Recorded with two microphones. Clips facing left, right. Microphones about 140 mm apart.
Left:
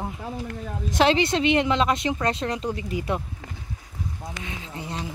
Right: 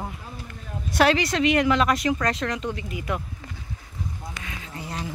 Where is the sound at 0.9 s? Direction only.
25° left (ahead or behind).